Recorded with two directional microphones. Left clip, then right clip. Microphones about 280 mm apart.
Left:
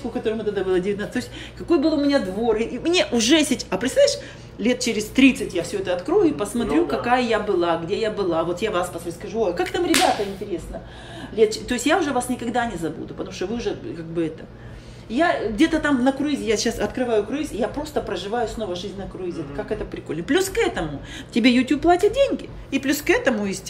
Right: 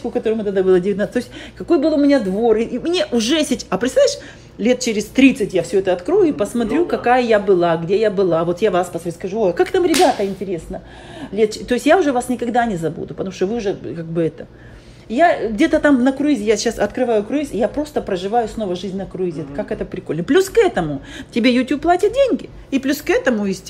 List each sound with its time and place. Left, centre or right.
0.1 s a woman's voice: centre
11.3 s a woman's voice: centre
20.1 s a woman's voice: centre